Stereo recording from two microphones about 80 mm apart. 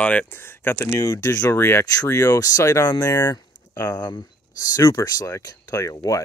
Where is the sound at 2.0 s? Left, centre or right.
Left.